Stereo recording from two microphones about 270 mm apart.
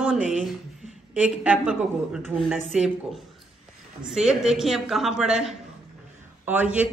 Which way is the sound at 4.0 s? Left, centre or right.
Centre.